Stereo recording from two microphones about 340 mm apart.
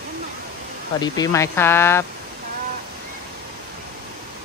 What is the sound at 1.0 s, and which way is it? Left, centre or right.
Speech, centre.